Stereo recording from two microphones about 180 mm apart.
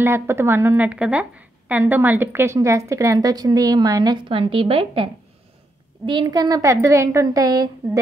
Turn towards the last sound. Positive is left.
turn(degrees=-20)  # may be behind; listen again after turning